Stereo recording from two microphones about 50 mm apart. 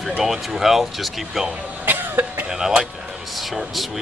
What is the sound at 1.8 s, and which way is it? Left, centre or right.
Cough, right.